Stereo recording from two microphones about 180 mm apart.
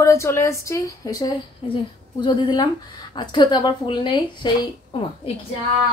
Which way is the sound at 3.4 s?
25° left (ahead or behind).